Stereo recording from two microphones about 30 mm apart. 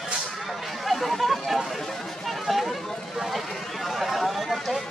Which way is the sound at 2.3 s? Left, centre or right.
Centre.